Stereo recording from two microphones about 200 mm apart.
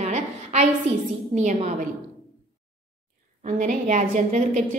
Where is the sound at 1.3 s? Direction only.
35° right (ahead or behind).